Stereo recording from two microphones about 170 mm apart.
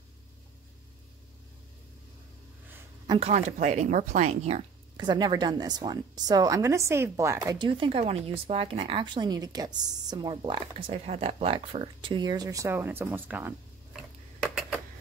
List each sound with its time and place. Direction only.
3.1 s speech: 35° right (ahead or behind)
4.9 s a woman's voice: 25° right (ahead or behind)